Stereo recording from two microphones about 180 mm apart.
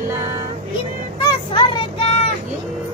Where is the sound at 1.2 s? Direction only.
25° left (ahead or behind).